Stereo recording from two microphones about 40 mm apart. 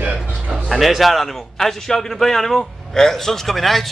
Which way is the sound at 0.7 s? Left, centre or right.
Centre.